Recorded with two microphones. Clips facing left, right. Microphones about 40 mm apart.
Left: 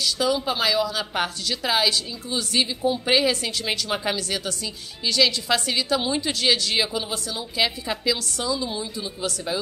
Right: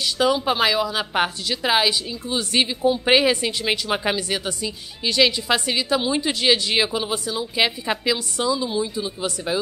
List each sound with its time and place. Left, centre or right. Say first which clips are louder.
0.0 s a woman's voice: right 3 dB; right
2.2 s a woman's voice: right 3 dB; right
8.5 s a woman's voice: right 5 dB; centre